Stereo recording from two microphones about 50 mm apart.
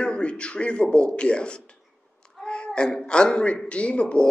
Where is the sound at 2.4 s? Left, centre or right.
Centre.